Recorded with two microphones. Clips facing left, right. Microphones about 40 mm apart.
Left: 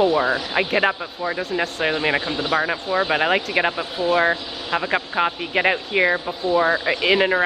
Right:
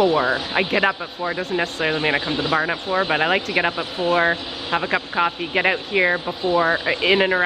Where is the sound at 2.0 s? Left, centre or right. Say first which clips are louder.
Right 1 dB; right.